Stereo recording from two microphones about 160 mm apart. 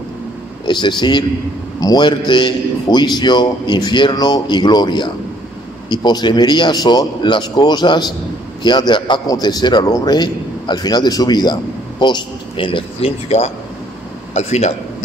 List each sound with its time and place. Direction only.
0.7 s a man's voice: 30° left (ahead or behind); by 15.0 s 45° left (ahead or behind)